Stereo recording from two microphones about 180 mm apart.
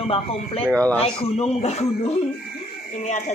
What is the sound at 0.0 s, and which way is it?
Speech, 30° left (ahead or behind).